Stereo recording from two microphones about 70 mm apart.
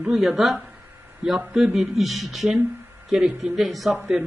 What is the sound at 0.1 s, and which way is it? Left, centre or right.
Speech, centre.